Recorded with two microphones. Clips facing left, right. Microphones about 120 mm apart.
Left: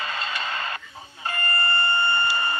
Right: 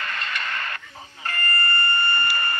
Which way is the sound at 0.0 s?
15° left (ahead or behind).